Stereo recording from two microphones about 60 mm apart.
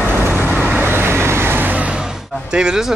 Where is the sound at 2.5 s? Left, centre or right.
Centre.